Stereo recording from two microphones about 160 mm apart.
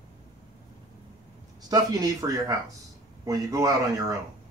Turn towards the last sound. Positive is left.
turn(degrees=-20)  # may be behind; listen again after turning